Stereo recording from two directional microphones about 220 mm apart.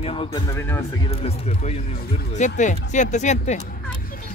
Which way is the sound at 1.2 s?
30° left (ahead or behind).